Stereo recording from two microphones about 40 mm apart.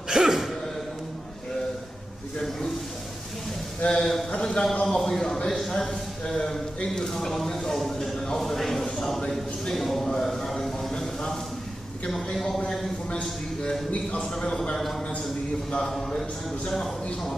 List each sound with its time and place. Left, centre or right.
0.1 s gasp: centre
3.8 s speech: centre
4.8 s speech: centre
9.3 s a sound: centre
12.1 s speech: centre
15.8 s speech: centre